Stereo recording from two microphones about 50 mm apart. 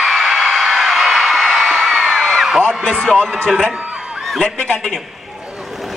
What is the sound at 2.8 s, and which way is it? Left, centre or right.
Speech, centre.